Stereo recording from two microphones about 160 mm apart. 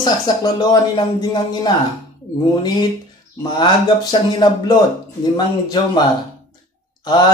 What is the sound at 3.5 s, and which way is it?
A man's voice, 25° left (ahead or behind).